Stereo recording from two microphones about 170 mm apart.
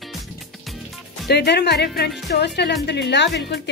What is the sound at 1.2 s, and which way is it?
A woman's voice, 75° left (ahead or behind).